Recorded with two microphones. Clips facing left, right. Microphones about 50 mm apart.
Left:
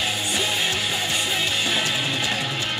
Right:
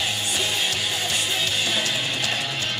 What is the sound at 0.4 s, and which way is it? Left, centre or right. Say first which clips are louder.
Music: left 1 dB; centre.